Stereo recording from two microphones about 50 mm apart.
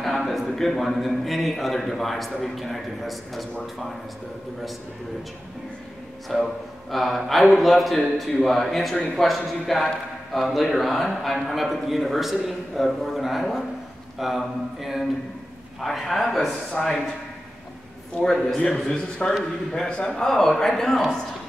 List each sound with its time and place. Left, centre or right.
0.0 s a man's voice: centre
6.2 s a man's voice: centre
18.2 s a man's voice: centre